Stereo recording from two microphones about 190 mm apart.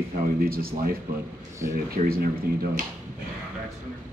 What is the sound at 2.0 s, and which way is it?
Speech, 35° right (ahead or behind).